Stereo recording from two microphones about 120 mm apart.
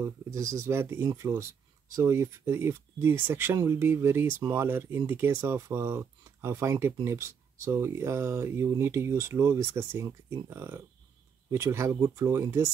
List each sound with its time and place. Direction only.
0.0 s speech: 25° right (ahead or behind)